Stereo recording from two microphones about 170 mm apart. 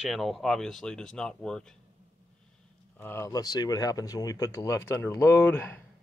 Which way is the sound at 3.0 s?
15° left (ahead or behind).